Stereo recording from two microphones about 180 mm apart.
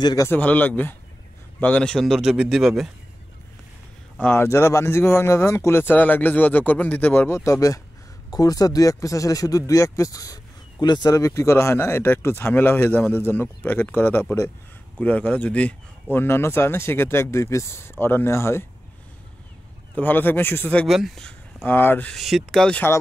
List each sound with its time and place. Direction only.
0.0 s a man's voice: 20° left (ahead or behind)
0.3 s speech: 10° left (ahead or behind)
4.2 s speech: 15° left (ahead or behind)
20.0 s speech: 10° left (ahead or behind)